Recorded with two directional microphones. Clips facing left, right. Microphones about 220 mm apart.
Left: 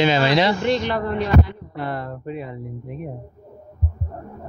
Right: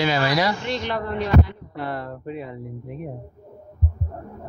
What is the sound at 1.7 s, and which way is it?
Speech, 20° left (ahead or behind).